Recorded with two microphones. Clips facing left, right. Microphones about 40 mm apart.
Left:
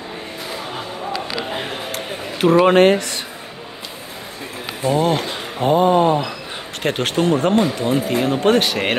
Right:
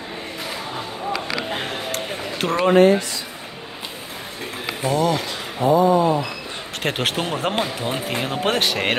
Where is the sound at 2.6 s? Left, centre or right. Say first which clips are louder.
Left 2 dB; left.